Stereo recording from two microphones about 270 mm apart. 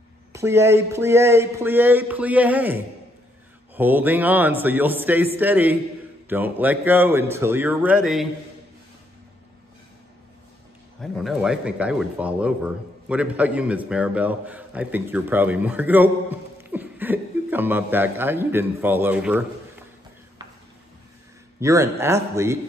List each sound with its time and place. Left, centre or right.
0.3 s speech: centre
11.0 s speech: centre
20.4 s a sound: centre
21.5 s speech: centre